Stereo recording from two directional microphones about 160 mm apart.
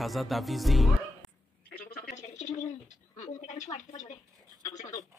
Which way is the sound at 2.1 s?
50° left (ahead or behind).